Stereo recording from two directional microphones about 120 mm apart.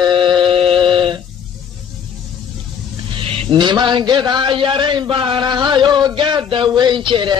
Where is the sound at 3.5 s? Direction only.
40° right (ahead or behind).